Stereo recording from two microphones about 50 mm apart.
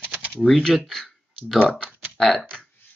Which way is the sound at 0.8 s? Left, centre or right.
Centre.